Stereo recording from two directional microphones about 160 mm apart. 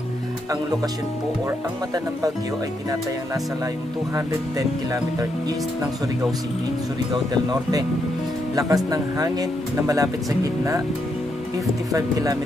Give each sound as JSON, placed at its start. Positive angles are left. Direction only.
{"t": 4.1, "sound": "speech", "side_deg": -20}
{"t": 8.5, "sound": "speech", "side_deg": -20}
{"t": 11.9, "sound": "speech", "side_deg": -20}